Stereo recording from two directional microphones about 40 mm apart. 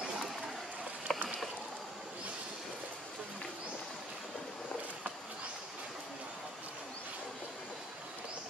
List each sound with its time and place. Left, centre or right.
1.1 s rowboat: centre